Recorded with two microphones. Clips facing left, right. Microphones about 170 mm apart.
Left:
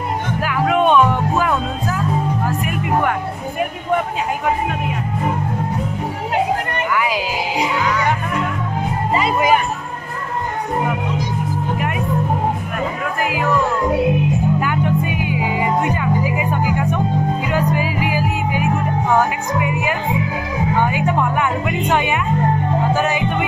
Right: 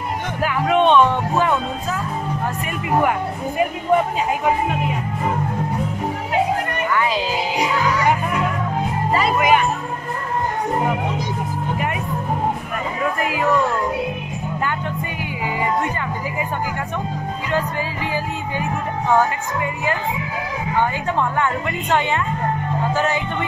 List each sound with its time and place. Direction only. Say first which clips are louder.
0.4 s music: even; 5° left (ahead or behind)
3.0 s speech: even; 5° right (ahead or behind)
7.0 s music: right 1 dB; 10° left (ahead or behind)
13.2 s speech: left 2 dB; centre (ahead or behind)
14.6 s music: left 5 dB; 10° left (ahead or behind)
19.1 s a woman's voice: even; 15° left (ahead or behind)
22.9 s music: left 2 dB; 15° left (ahead or behind)